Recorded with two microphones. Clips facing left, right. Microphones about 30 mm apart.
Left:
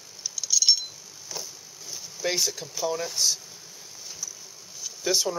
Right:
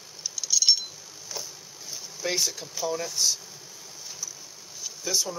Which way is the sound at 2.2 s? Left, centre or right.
Centre.